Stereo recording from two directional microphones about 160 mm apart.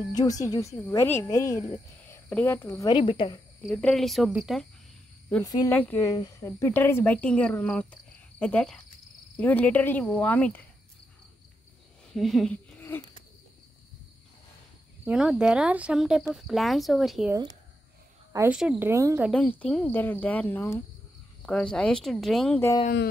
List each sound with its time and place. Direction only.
0.1 s speech: 25° left (ahead or behind)
3.0 s speech: 35° left (ahead or behind)
3.6 s speech: 5° left (ahead or behind)
5.4 s speech: 25° left (ahead or behind)
5.7 s speech: 10° left (ahead or behind)
12.1 s speech: centre (ahead or behind)
15.0 s speech: 5° right (ahead or behind)
18.5 s speech: 5° right (ahead or behind)
19.3 s speech: 5° left (ahead or behind)